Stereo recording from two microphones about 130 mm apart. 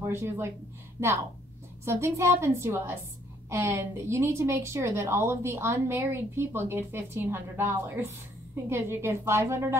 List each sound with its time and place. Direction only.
0.0 s a woman's voice: 20° right (ahead or behind)
1.9 s a woman's voice: 20° right (ahead or behind)